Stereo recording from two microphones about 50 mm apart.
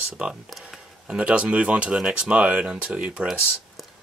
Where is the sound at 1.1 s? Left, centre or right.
Right.